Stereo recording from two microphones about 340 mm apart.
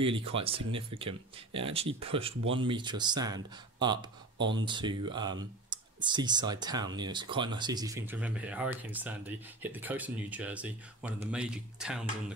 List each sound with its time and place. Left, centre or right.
0.0 s speech: centre
4.4 s speech: right
4.6 s speech: centre